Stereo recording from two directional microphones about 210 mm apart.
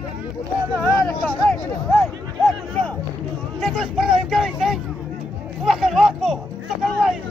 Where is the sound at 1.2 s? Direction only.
5° left (ahead or behind).